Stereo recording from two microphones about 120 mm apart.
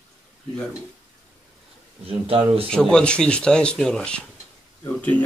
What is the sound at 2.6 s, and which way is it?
Speech, 5° left (ahead or behind).